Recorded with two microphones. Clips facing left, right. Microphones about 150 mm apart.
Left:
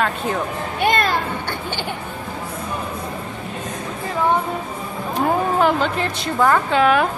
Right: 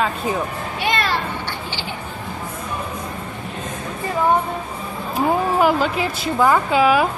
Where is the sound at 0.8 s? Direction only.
50° left (ahead or behind).